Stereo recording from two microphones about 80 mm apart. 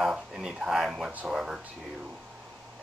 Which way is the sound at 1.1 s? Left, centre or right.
Centre.